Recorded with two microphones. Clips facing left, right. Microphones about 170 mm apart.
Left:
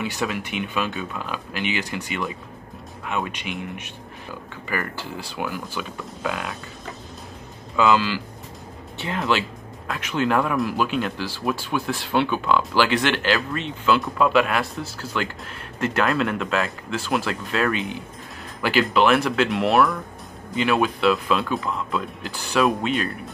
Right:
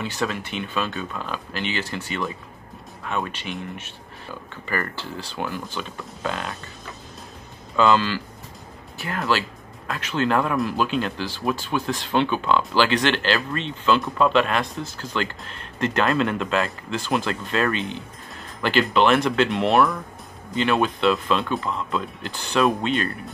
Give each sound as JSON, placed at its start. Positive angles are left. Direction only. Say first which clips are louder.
{"t": 0.0, "sound": "speech", "louder": "even", "side_deg": 10}
{"t": 7.7, "sound": "speech", "louder": "even", "side_deg": 10}
{"t": 8.9, "sound": "music", "louder": "left 2 dB", "side_deg": 25}
{"t": 9.9, "sound": "speech", "louder": "even", "side_deg": 10}